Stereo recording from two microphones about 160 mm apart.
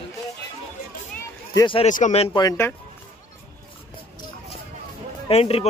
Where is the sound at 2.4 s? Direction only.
20° left (ahead or behind).